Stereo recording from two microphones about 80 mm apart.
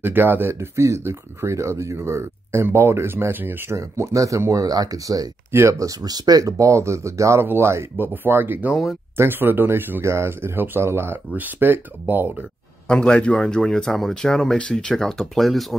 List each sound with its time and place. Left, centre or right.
0.0 s speech: right
3.7 s speech: right
5.5 s speech: right
5.8 s speech: right
12.8 s a man's voice: centre